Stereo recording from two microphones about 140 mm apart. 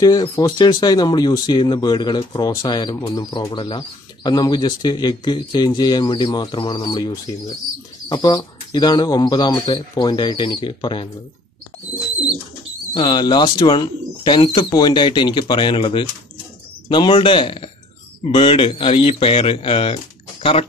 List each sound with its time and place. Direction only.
0.0 s speech: 30° left (ahead or behind)
12.9 s speech: 30° left (ahead or behind)